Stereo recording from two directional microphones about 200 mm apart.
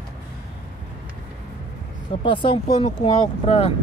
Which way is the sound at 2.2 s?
25° left (ahead or behind).